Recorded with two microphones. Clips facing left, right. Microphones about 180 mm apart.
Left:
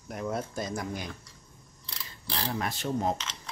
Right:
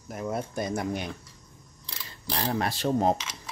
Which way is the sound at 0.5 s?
65° right (ahead or behind).